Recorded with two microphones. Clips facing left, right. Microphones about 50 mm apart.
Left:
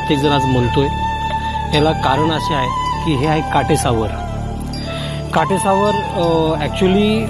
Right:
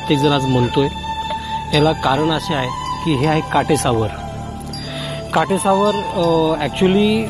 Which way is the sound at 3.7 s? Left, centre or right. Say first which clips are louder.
Left 1 dB; centre.